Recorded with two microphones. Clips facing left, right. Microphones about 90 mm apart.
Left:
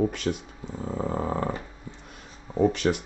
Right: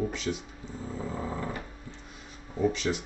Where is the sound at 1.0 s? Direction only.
60° left (ahead or behind).